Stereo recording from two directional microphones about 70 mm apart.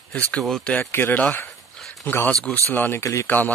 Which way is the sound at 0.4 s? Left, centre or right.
Centre.